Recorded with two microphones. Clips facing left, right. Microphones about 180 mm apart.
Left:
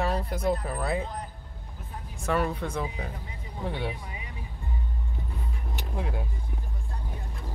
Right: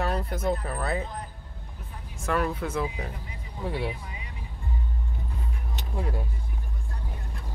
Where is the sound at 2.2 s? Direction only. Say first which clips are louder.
Even; centre (ahead or behind).